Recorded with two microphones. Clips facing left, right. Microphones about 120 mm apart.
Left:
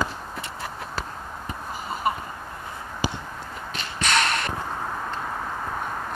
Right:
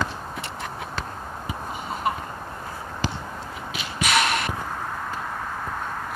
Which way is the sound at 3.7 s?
5° right (ahead or behind).